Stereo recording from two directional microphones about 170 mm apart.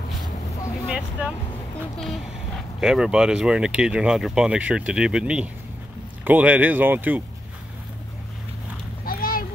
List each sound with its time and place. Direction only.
0.8 s vehicle: 5° right (ahead or behind)
2.8 s speech: 5° right (ahead or behind)
9.0 s a sound: 60° left (ahead or behind)